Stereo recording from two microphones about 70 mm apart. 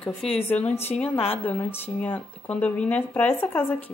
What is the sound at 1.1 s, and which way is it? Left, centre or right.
Speech, left.